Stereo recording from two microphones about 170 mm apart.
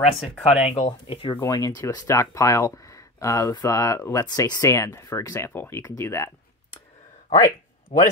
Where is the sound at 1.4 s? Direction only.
20° left (ahead or behind).